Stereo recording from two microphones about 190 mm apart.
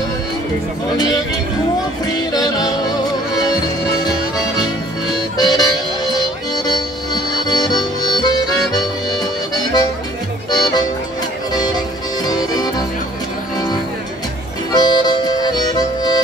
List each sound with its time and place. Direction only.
2.0 s music: 20° left (ahead or behind)
14.7 s music: 20° left (ahead or behind)